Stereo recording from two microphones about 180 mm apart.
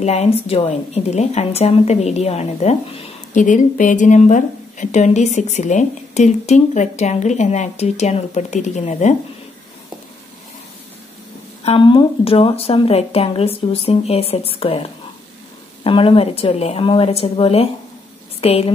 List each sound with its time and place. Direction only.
0.0 s speech: 35° left (ahead or behind)
11.6 s a woman's voice: 30° left (ahead or behind)